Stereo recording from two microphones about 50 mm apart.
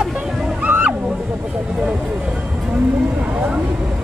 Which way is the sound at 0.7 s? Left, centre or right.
Right.